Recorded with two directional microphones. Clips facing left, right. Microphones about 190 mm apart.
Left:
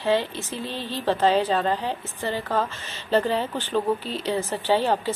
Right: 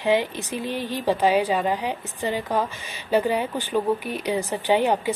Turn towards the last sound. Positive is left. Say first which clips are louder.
# right 1 dB
turn(degrees=-15)  # may be behind; listen again after turning